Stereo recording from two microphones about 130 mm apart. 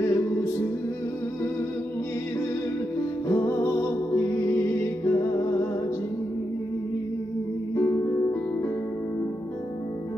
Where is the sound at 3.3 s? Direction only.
20° left (ahead or behind).